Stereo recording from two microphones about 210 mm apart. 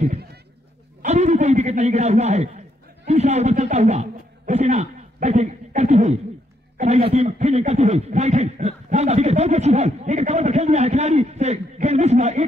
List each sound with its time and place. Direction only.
1.0 s a man's voice: 35° right (ahead or behind)